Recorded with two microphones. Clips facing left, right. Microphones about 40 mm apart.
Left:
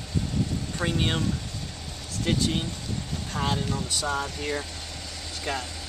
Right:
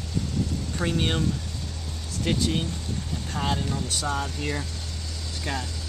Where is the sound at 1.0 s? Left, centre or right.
Centre.